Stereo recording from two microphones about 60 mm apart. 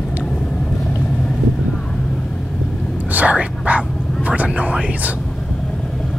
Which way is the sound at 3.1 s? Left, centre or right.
Right.